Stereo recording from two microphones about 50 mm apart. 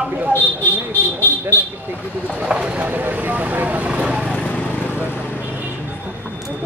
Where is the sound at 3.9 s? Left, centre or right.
Right.